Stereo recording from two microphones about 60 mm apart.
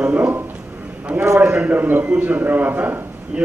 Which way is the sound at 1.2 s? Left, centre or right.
Right.